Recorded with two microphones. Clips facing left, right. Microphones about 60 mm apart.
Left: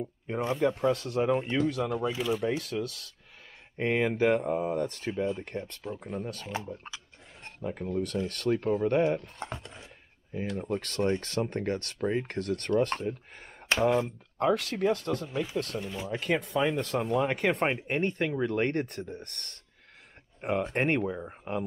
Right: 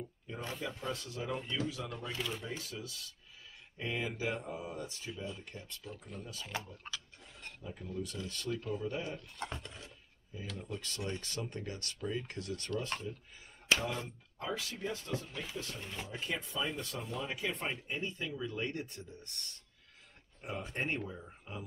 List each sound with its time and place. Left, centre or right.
0.6 s speech: left
2.1 s speech: centre
2.4 s speech: left
5.9 s speech: left
6.4 s speech: left
7.6 s speech: left
9.4 s speech: left
10.4 s speech: left
15.8 s speech: centre
16.1 s speech: left